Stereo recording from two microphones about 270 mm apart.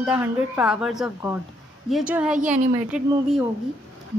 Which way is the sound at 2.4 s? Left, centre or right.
Right.